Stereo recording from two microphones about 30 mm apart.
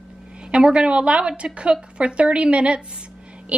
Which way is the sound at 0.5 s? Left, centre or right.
Right.